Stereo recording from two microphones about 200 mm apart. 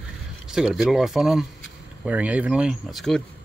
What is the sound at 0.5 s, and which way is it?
Speech, 5° right (ahead or behind).